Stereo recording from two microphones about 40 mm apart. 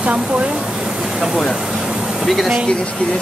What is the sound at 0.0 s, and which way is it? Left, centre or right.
Speech, right.